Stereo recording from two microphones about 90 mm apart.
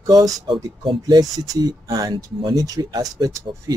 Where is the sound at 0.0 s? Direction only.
45° right (ahead or behind).